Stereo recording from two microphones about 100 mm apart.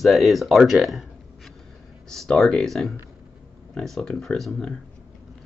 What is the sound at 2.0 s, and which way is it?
Speech, 5° left (ahead or behind).